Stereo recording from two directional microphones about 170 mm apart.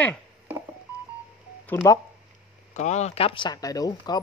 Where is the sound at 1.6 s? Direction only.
15° left (ahead or behind).